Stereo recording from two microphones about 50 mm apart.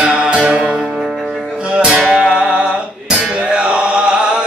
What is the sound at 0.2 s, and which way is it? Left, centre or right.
Music, right.